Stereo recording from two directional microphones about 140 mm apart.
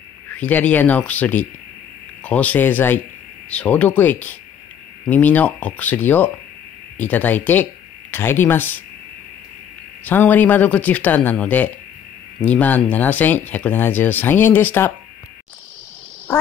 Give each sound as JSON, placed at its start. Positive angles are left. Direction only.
{"t": 0.3, "sound": "speech", "side_deg": 10}
{"t": 10.0, "sound": "speech", "side_deg": 10}